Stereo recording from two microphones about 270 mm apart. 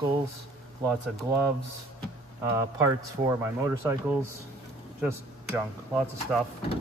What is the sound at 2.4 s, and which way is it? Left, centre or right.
Speech, centre.